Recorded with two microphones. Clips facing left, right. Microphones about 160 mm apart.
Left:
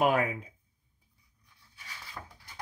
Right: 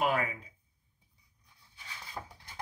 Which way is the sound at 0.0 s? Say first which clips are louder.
Left 4 dB; 50° left (ahead or behind).